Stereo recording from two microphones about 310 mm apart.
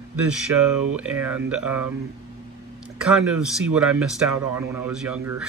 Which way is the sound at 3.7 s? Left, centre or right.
Centre.